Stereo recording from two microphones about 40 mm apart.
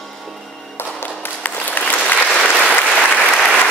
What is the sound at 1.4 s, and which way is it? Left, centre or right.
Applause, left.